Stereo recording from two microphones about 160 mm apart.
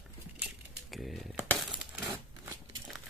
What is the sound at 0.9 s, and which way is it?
Speech, centre (ahead or behind).